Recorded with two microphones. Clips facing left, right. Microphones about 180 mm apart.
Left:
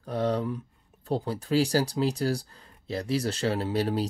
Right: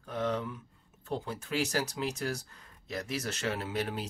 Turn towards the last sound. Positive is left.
turn(degrees=35)  # may be behind; listen again after turning